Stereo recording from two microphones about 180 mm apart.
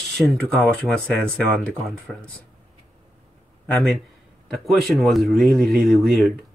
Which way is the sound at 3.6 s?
Centre (ahead or behind).